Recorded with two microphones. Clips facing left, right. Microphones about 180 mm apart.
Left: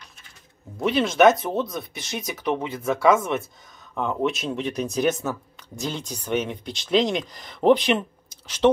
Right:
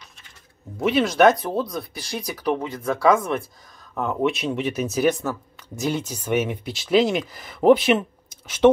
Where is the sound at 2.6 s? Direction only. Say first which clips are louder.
Even; 25° left (ahead or behind).